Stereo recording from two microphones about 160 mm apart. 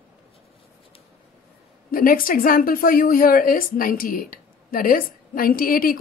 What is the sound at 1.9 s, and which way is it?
A woman's voice, 60° left (ahead or behind).